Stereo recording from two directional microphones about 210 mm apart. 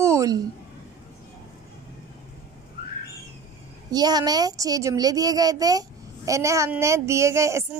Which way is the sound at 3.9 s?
20° right (ahead or behind).